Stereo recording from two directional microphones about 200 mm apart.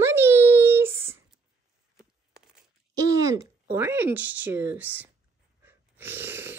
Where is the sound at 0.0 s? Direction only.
10° right (ahead or behind).